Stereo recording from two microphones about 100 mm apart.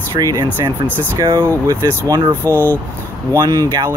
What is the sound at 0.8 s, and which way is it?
Speech, 20° left (ahead or behind).